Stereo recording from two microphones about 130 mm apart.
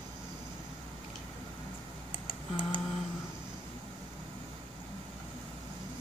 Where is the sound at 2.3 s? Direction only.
40° left (ahead or behind).